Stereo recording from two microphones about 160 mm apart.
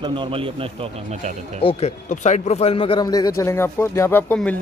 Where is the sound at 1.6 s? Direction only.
40° left (ahead or behind).